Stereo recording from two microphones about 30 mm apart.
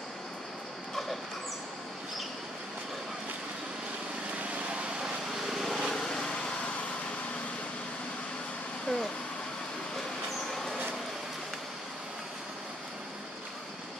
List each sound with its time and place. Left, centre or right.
5.5 s vehicle: centre
5.9 s vehicle: left
8.8 s vehicle: centre
10.5 s a sound: centre